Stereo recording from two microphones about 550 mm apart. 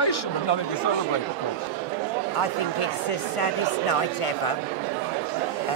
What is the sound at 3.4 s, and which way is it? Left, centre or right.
Speech, left.